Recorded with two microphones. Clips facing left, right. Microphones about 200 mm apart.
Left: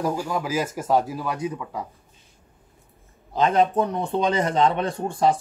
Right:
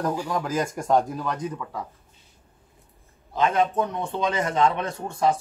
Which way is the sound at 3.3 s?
30° left (ahead or behind).